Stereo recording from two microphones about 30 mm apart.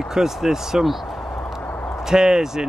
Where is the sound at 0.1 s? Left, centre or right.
Centre.